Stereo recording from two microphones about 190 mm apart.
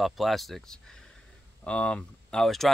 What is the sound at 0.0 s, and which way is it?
Speech, centre (ahead or behind).